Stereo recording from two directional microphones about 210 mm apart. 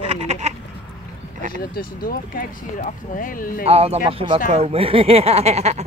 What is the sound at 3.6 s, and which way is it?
Speech, 30° right (ahead or behind).